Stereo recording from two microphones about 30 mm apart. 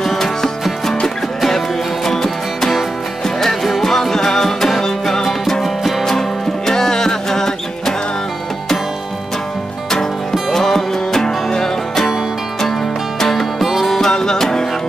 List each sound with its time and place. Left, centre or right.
0.0 s music: centre
6.6 s music: centre
10.5 s music: centre
13.3 s music: centre
13.8 s music: centre